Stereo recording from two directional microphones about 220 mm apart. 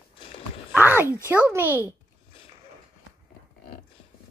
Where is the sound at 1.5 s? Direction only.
10° right (ahead or behind).